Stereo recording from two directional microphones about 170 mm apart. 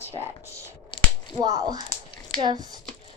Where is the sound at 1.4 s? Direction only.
20° right (ahead or behind).